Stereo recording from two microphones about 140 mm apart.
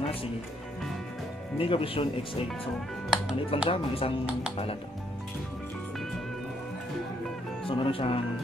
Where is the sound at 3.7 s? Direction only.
40° left (ahead or behind).